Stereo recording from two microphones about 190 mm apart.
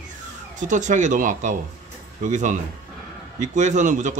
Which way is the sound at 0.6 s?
40° right (ahead or behind).